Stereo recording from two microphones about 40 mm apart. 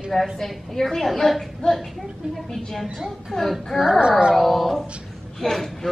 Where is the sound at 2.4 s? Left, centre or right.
Centre.